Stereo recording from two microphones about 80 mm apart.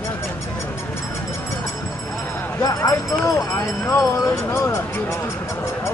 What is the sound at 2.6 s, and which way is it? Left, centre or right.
Speech, left.